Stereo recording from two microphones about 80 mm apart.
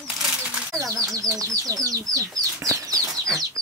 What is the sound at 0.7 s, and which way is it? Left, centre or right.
Speech, right.